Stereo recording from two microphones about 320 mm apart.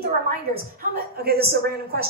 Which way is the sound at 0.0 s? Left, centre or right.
Right.